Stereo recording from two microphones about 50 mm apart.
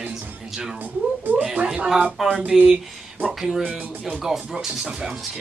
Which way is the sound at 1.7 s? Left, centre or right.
Centre.